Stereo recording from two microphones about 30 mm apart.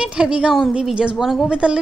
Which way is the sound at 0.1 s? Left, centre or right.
Right.